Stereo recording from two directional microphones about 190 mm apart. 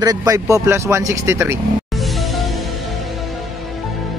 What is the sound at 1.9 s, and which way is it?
Music, centre (ahead or behind).